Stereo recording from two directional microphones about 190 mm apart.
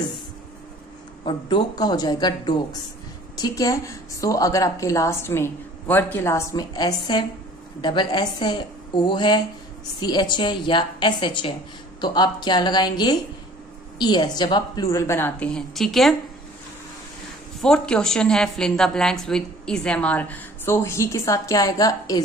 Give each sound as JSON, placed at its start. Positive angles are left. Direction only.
{"t": 1.2, "sound": "a woman's voice", "side_deg": 25}
{"t": 17.6, "sound": "a woman's voice", "side_deg": 5}